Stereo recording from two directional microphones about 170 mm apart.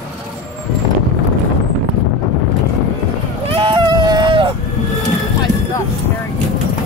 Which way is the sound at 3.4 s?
30° right (ahead or behind).